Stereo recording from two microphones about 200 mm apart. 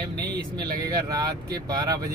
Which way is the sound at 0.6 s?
20° right (ahead or behind).